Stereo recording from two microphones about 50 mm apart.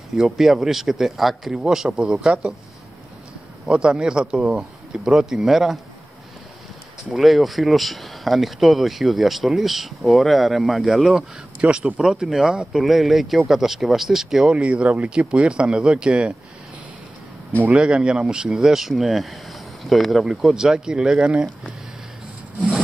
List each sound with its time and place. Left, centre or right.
0.1 s speech: centre
3.7 s speech: centre
4.6 s speech: centre
7.1 s speech: centre
11.6 s speech: centre
12.0 s speech: centre
14.6 s speech: right
17.6 s speech: centre
18.5 s speech: centre
20.6 s speech: centre